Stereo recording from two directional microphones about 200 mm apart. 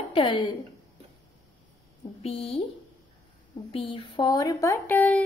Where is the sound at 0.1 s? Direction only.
25° left (ahead or behind).